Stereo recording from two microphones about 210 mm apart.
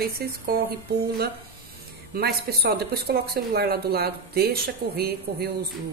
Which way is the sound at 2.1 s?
45° right (ahead or behind).